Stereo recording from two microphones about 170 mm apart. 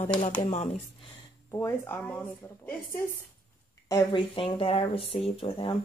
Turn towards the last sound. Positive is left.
turn(degrees=30)  # may be behind; listen again after turning